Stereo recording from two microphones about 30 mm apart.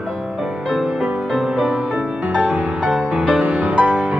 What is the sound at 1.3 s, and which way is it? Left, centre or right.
Music, centre.